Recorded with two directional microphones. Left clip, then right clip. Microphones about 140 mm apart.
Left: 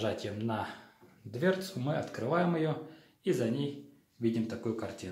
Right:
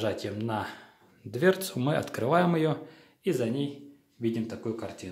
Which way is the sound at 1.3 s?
50° right (ahead or behind).